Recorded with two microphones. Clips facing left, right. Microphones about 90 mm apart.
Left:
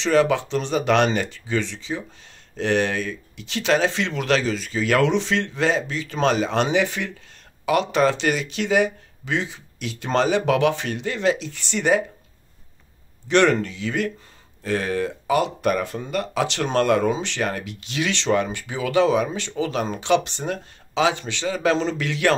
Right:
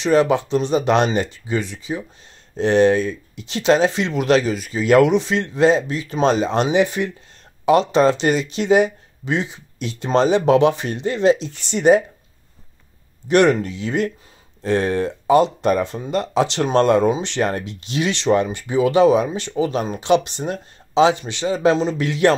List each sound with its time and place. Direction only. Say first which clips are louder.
0.0 s speech: right 3 dB; 20° right (ahead or behind)
13.3 s speech: right 3 dB; 20° right (ahead or behind)